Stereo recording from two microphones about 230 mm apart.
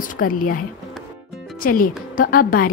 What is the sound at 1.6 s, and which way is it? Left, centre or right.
A woman's voice, left.